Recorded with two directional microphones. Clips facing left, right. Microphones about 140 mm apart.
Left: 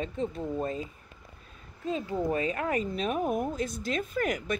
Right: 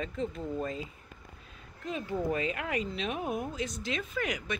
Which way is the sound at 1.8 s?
25° left (ahead or behind).